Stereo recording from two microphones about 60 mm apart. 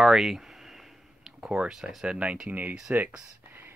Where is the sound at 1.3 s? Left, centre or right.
Centre.